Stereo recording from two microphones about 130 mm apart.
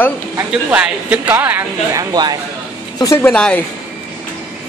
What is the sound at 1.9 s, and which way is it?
Speech, 30° right (ahead or behind).